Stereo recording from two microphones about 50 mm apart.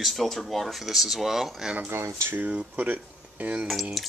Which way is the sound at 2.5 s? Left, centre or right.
Centre.